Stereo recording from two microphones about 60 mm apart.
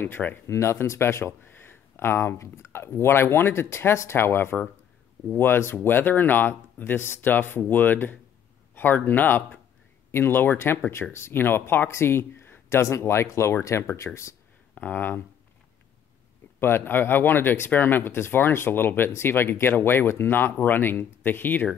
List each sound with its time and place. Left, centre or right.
0.5 s speech: left
10.9 s speech: left
14.8 s speech: left
16.5 s speech: left